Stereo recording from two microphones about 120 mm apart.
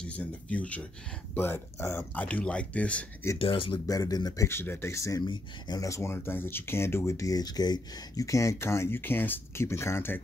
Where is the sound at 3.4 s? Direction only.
45° left (ahead or behind).